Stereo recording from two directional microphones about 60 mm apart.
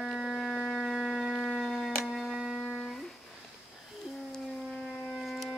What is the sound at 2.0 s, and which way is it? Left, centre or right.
Music, centre.